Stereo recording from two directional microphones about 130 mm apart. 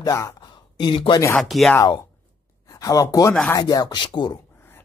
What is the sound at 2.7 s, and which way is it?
Speech, 30° left (ahead or behind).